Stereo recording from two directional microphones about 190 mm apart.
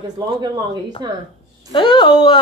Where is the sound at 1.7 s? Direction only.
25° left (ahead or behind).